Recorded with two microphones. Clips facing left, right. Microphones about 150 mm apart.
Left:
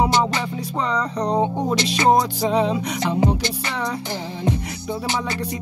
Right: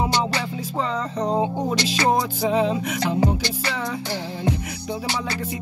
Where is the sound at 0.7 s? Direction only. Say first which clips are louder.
Left 2 dB; 75° left (ahead or behind).